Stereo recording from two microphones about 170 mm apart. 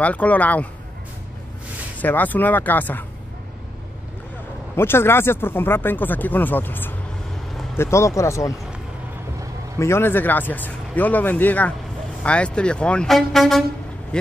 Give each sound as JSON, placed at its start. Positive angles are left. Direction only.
{"t": 0.0, "sound": "speech", "side_deg": 10}
{"t": 2.0, "sound": "speech", "side_deg": 10}
{"t": 4.7, "sound": "speech", "side_deg": 15}
{"t": 9.8, "sound": "speech", "side_deg": 15}